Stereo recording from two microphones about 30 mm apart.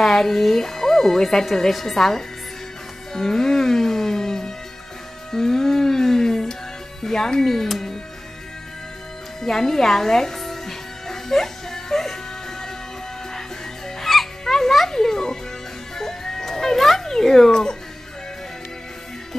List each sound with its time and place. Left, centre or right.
0.0 s a woman's voice: centre
3.1 s music: centre
7.0 s speech: centre
9.4 s music: centre
14.1 s music: centre